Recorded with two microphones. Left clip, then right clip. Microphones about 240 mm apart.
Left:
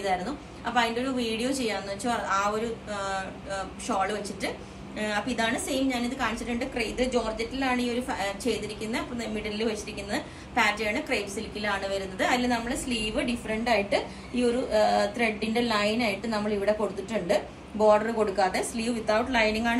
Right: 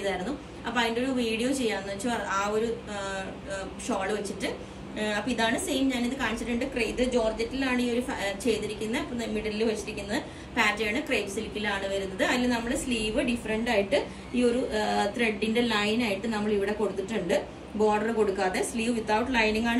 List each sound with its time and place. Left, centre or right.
0.0 s a woman's voice: centre